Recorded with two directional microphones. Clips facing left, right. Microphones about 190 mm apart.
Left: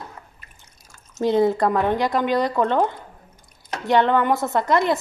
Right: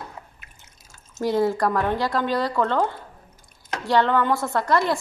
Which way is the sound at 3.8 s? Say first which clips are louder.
Left 2 dB; 20° left (ahead or behind).